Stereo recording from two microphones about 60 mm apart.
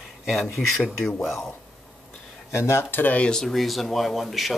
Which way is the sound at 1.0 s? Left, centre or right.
Centre.